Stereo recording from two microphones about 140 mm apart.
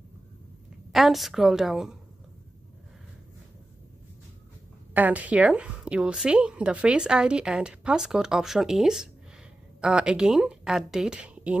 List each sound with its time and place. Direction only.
0.9 s speech: centre (ahead or behind)
4.9 s a woman's voice: 10° right (ahead or behind)